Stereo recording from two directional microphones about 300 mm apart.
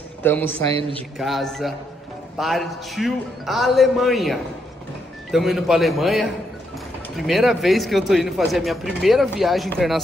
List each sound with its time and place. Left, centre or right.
0.2 s speech: centre
0.7 s speech: centre
1.1 s speech: centre